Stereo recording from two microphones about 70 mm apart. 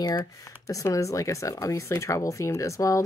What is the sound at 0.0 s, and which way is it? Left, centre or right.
Speech, left.